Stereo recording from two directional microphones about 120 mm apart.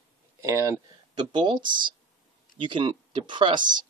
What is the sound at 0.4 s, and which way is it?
Speech, 25° right (ahead or behind).